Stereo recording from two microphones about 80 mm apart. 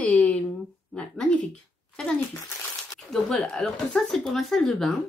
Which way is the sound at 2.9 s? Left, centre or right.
Centre.